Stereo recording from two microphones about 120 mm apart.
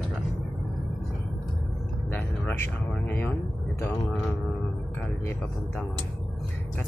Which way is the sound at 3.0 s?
15° left (ahead or behind).